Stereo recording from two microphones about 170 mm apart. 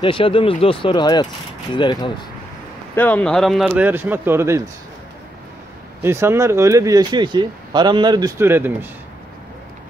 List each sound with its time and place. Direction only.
0.0 s speech: 30° left (ahead or behind)
3.0 s speech: 10° left (ahead or behind); by 4.6 s 15° right (ahead or behind)
6.0 s speech: 15° right (ahead or behind)
8.4 s speech: 15° right (ahead or behind)